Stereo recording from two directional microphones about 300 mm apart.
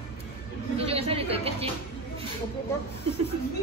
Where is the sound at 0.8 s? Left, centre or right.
Centre.